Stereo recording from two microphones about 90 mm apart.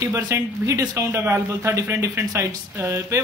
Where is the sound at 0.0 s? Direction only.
35° right (ahead or behind).